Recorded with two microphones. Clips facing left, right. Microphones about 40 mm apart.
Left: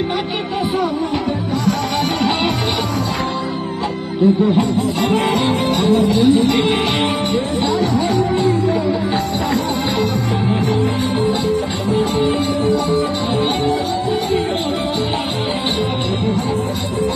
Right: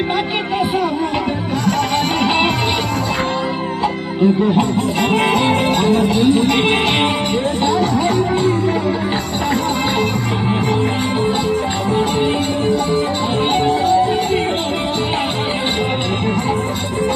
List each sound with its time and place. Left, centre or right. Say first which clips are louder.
1.7 s music: right 2 dB; right
4.2 s music: even; right
7.6 s speech: right 2 dB; right
11.9 s music: left 1 dB; right